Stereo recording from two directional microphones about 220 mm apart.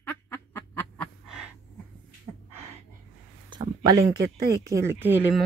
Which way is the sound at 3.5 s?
20° right (ahead or behind).